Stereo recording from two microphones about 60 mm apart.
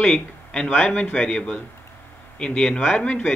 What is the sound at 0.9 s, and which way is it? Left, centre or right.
A man's voice, left.